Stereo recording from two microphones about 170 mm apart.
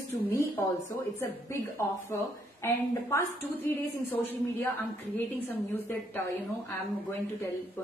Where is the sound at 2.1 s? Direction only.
15° left (ahead or behind).